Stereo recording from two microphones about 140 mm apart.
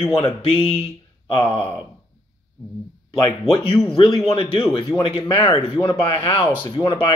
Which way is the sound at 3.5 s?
40° left (ahead or behind).